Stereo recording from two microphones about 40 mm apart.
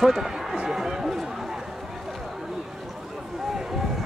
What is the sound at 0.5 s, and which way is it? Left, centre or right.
Speech, centre.